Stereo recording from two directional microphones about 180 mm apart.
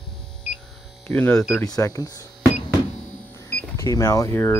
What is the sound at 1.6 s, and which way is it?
Speech, 20° left (ahead or behind).